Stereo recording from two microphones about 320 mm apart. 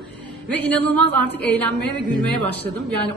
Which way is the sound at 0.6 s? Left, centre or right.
Centre.